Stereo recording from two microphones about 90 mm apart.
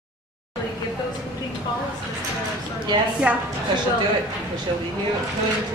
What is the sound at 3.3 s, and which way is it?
Speech, 15° right (ahead or behind).